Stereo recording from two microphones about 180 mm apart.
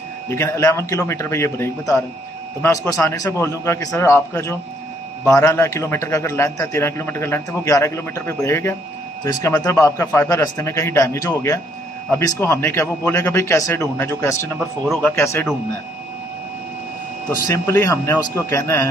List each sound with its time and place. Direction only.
0.4 s a man's voice: 15° left (ahead or behind)
17.4 s a man's voice: 15° left (ahead or behind)